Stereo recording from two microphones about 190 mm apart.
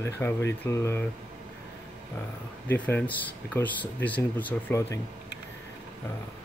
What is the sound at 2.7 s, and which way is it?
Speech, 10° left (ahead or behind).